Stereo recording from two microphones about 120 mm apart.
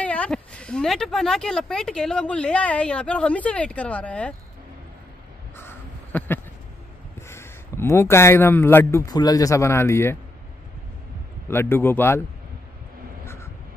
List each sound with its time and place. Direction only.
0.0 s speech: 10° left (ahead or behind)
5.6 s a sound: 20° left (ahead or behind)
7.2 s a man's voice: 20° left (ahead or behind)
9.1 s speech: 30° left (ahead or behind)
11.4 s speech: 20° left (ahead or behind)
13.2 s vehicle: 20° left (ahead or behind)